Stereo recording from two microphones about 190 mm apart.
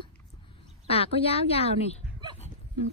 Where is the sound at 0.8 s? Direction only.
30° left (ahead or behind).